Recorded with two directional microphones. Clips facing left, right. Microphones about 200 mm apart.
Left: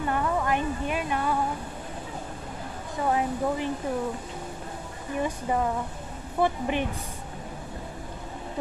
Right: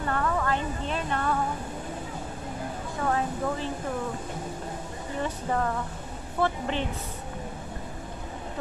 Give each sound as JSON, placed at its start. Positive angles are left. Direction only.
{"t": 0.0, "sound": "a sound", "side_deg": 15}
{"t": 3.1, "sound": "speech", "side_deg": 15}
{"t": 5.2, "sound": "speech", "side_deg": 10}